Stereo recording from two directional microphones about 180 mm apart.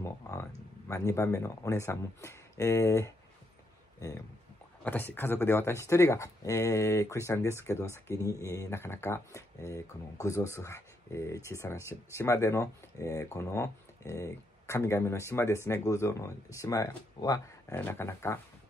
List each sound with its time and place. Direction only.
0.0 s a sound: 15° left (ahead or behind)
0.8 s speech: 15° left (ahead or behind)
4.8 s speech: 10° left (ahead or behind)